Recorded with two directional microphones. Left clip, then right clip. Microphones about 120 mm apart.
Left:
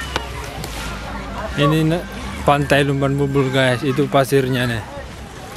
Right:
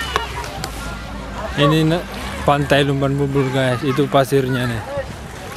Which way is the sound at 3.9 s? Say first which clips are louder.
Right 2 dB; centre (ahead or behind).